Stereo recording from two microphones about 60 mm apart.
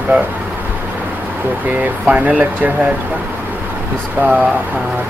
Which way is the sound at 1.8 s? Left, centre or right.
Right.